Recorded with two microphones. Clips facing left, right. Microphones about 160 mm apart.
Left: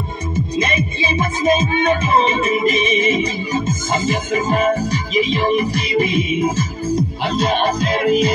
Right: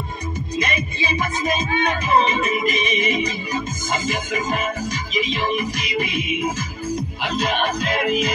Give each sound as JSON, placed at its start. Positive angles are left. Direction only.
{"t": 0.6, "sound": "music", "side_deg": 25}